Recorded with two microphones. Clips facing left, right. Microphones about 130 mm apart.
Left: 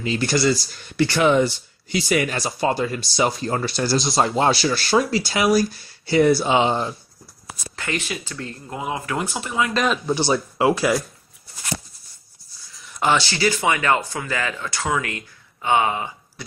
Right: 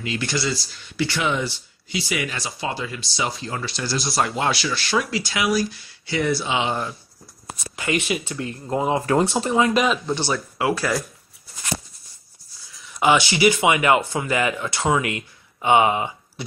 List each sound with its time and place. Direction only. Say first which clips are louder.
0.0 s speech: left 5 dB; 35° left (ahead or behind)
4.0 s speech: left 2 dB; 25° left (ahead or behind)
6.7 s speech: left 3 dB; 25° left (ahead or behind)
7.7 s speech: right 4 dB; 10° right (ahead or behind)
8.6 s speech: right 7 dB; 30° right (ahead or behind)
9.8 s speech: right 1 dB; centre (ahead or behind)
10.1 s speech: left 4 dB; 15° left (ahead or behind)
12.7 s a sound: right 2 dB; 5° right (ahead or behind)
13.2 s speech: right 3 dB; 20° right (ahead or behind)